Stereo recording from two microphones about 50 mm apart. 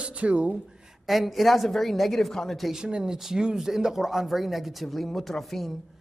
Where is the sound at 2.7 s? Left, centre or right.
Centre.